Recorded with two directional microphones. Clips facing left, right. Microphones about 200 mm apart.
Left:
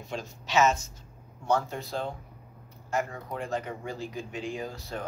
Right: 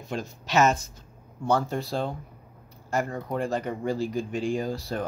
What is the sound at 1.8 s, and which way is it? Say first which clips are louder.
Speech: right 4 dB; 30° right (ahead or behind).